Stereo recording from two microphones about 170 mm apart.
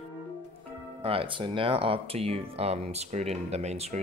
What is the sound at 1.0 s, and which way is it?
Speech, 30° right (ahead or behind).